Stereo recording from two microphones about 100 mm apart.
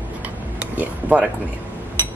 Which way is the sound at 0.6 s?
15° right (ahead or behind).